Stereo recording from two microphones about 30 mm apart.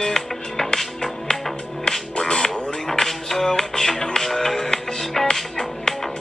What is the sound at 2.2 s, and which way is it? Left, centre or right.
Music, left.